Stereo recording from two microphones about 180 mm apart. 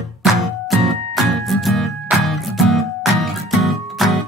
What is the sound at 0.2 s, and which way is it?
Music, centre (ahead or behind).